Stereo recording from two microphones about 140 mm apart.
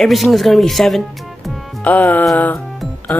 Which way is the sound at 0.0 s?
Centre (ahead or behind).